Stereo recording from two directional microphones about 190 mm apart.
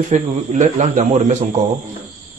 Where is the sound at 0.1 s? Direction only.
40° right (ahead or behind).